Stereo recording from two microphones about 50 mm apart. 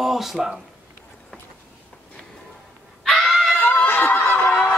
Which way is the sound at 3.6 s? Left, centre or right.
Left.